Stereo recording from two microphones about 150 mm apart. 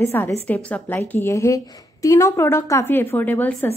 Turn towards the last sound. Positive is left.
turn(degrees=15)  # may be behind; listen again after turning